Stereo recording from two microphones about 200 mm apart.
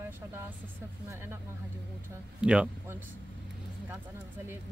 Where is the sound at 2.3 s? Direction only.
5° right (ahead or behind).